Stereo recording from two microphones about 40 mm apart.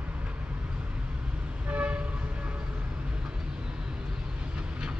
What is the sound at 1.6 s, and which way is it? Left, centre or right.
Vehicle, right.